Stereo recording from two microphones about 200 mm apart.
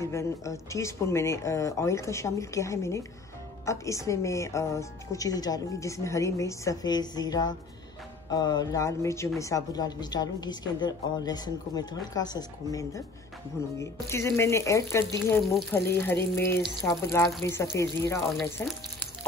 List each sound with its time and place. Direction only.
0.0 s speech: 15° left (ahead or behind)
18.4 s speech: centre (ahead or behind)